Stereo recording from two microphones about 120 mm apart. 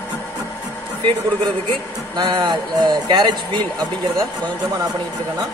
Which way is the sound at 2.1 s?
35° right (ahead or behind).